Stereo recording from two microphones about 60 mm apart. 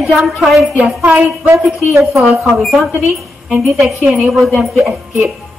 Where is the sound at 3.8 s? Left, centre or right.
Centre.